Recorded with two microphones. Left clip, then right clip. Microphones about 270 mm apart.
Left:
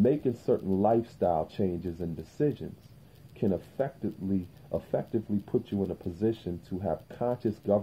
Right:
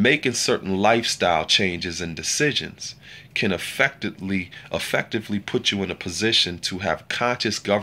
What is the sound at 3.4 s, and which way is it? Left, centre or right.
Speech, right.